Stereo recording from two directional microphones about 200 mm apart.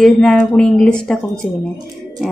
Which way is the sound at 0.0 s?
5° left (ahead or behind).